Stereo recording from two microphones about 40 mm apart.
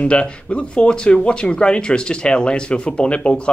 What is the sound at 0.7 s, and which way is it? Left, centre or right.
Speech, left.